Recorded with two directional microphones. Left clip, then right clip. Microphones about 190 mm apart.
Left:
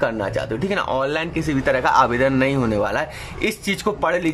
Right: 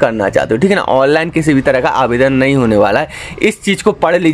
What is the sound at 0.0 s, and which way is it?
Speech, 20° right (ahead or behind).